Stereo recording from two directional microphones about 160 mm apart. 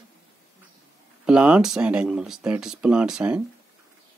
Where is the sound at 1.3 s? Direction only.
5° right (ahead or behind).